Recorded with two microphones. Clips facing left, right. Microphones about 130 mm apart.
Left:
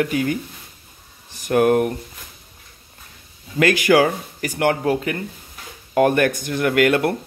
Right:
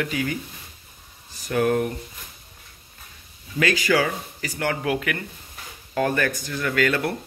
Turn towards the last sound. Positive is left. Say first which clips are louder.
# left 6 dB
turn(degrees=55)  # may be behind; listen again after turning